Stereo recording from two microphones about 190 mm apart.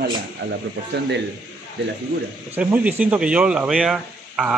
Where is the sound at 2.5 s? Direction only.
10° right (ahead or behind).